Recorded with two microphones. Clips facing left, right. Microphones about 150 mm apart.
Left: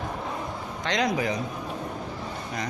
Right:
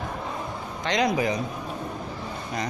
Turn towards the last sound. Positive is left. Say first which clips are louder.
# right 2 dB
turn(degrees=-15)  # may be behind; listen again after turning